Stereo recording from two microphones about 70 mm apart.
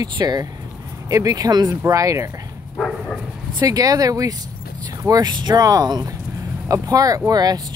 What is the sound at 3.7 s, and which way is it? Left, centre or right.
Speech, right.